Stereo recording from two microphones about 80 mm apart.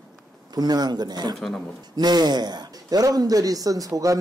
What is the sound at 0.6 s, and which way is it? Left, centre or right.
Speech, right.